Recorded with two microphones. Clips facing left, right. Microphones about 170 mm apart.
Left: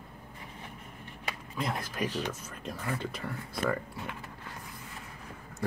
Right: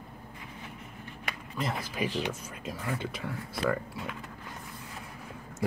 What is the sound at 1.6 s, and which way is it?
Speech, centre (ahead or behind).